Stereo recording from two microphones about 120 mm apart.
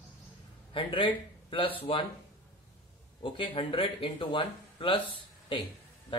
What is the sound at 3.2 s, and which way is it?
Speech, 45° left (ahead or behind).